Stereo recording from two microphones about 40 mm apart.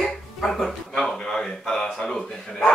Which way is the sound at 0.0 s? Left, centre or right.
Centre.